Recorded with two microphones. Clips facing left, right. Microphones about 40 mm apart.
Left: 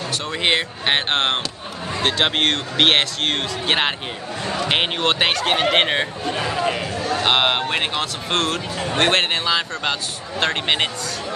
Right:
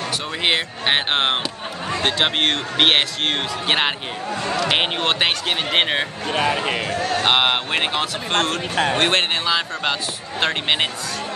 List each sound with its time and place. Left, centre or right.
0.4 s speech: centre
6.2 s a man's voice: right
7.2 s speech: centre